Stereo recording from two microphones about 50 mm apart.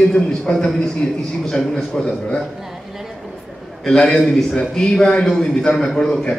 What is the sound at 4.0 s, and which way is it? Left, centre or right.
A man's voice, centre.